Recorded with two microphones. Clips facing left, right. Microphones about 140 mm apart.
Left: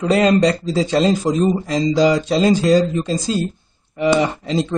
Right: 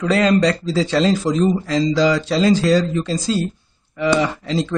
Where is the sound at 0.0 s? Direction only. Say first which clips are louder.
Left 1 dB; 25° left (ahead or behind).